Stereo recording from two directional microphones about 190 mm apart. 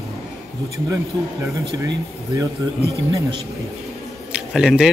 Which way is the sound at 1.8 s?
20° right (ahead or behind).